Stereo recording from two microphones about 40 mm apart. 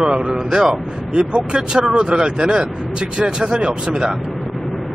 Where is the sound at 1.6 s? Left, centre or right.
Centre.